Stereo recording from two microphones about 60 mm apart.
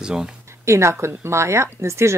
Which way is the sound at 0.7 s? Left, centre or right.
Right.